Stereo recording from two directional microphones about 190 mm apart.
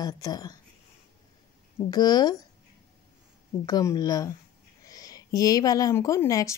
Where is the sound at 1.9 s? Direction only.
20° left (ahead or behind).